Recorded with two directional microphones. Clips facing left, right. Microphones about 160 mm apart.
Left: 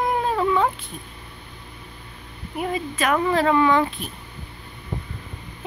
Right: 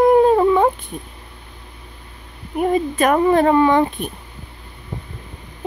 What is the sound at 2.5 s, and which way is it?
A woman's voice, 45° right (ahead or behind).